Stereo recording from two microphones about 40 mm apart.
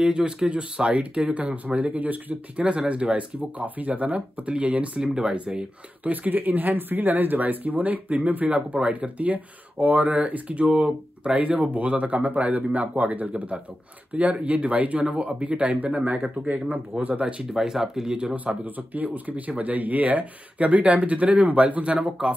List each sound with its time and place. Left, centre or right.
0.0 s speech: centre; by 2.3 s right
2.5 s speech: right
3.5 s speech: right
5.0 s speech: centre
6.0 s speech: right
8.7 s speech: right
17.5 s speech: centre
18.6 s speech: right